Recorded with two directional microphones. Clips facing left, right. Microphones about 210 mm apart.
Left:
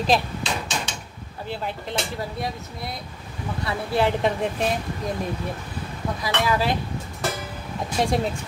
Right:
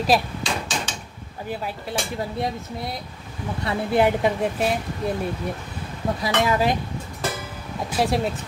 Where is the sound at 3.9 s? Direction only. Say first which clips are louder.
Right 2 dB; 10° right (ahead or behind).